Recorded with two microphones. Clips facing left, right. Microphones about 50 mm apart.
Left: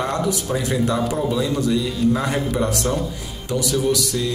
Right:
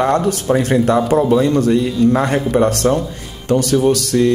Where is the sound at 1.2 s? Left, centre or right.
Right.